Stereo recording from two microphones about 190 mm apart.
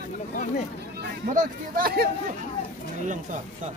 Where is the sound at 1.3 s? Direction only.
50° right (ahead or behind).